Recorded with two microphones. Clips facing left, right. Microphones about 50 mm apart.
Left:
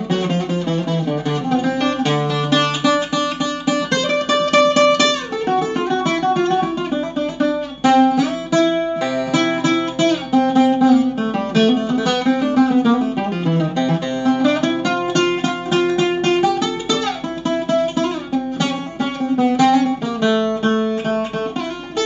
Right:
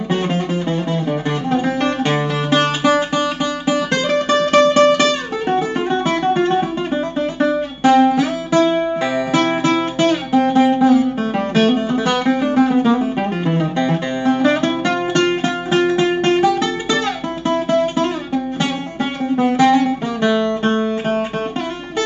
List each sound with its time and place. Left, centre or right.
1.5 s music: right
8.6 s music: centre
9.0 s music: right
19.3 s music: right